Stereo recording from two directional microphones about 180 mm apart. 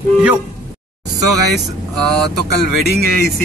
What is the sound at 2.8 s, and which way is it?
Speech, 55° left (ahead or behind).